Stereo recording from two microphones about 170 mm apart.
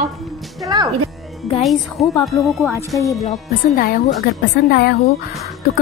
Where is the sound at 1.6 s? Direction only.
Centre (ahead or behind).